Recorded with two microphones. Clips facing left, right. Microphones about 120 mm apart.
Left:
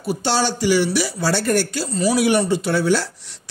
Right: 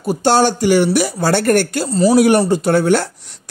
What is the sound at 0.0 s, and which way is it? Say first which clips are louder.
A woman's voice: right 7 dB; 45° right (ahead or behind).